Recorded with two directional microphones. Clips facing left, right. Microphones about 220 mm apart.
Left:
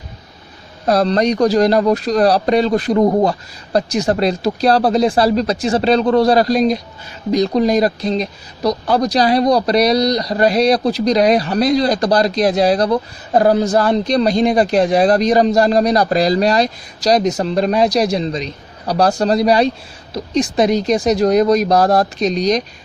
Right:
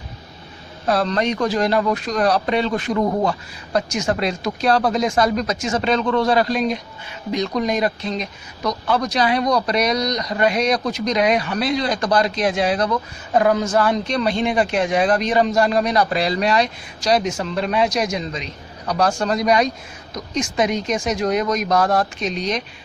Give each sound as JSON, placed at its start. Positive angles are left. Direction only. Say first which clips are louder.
{"t": 0.8, "sound": "speech", "louder": "left 5 dB", "side_deg": 40}